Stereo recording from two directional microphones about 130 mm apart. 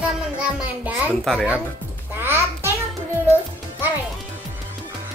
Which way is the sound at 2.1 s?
15° right (ahead or behind).